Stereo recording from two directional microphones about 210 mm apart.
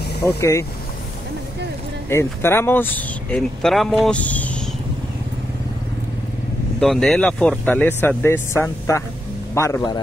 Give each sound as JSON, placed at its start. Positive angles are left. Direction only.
{"t": 0.2, "sound": "speech", "side_deg": 15}
{"t": 2.0, "sound": "speech", "side_deg": 10}
{"t": 6.8, "sound": "speech", "side_deg": 0}